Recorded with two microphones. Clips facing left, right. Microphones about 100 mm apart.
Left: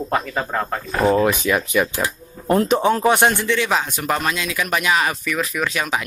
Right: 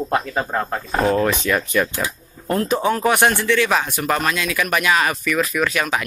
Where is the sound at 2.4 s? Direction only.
20° left (ahead or behind).